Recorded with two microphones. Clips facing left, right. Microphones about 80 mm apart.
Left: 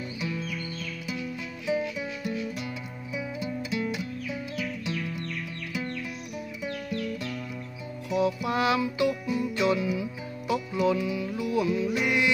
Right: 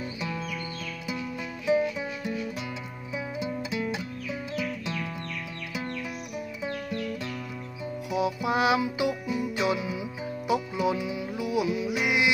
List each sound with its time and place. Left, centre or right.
0.2 s music: right
1.7 s music: right
6.6 s music: right; by 12.3 s centre